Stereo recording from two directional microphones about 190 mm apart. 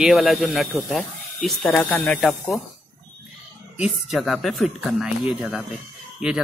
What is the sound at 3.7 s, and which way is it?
Speech, 5° right (ahead or behind).